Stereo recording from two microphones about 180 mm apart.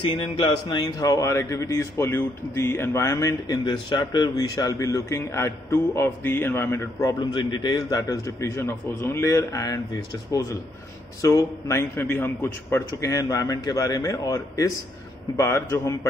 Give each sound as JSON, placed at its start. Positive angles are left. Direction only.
{"t": 0.1, "sound": "speech", "side_deg": 25}
{"t": 11.1, "sound": "speech", "side_deg": 15}